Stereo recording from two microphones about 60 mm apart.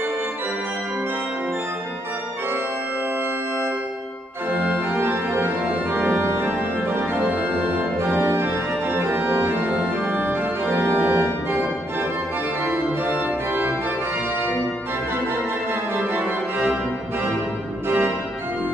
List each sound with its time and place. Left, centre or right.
4.5 s organ: right
12.6 s organ: right
15.7 s music: right